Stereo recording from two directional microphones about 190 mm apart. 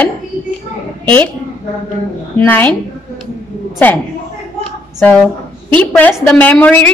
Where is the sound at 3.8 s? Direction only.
10° left (ahead or behind).